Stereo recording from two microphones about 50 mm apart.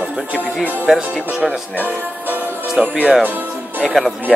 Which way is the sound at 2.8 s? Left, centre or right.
Centre.